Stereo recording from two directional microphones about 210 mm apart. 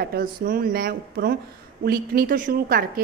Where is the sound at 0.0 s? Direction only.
45° right (ahead or behind).